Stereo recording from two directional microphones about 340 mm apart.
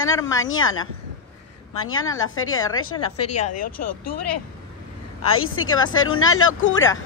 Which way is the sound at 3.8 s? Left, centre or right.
Left.